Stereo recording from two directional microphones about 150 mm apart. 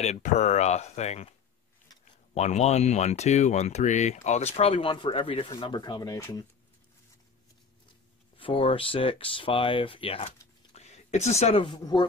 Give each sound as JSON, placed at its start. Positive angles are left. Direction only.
{"t": 0.0, "sound": "speech", "side_deg": 50}
{"t": 2.3, "sound": "speech", "side_deg": 45}
{"t": 8.4, "sound": "speech", "side_deg": 40}
{"t": 10.7, "sound": "a sound", "side_deg": 45}
{"t": 11.8, "sound": "speech", "side_deg": 30}